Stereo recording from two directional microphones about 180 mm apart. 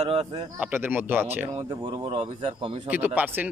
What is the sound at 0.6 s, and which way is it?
Speech, 10° right (ahead or behind).